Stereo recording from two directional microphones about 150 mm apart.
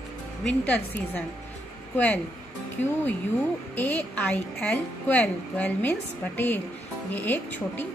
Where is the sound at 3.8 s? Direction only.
10° left (ahead or behind).